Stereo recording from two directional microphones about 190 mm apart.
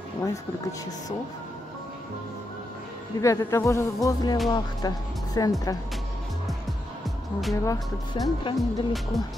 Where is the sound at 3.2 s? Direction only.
15° left (ahead or behind).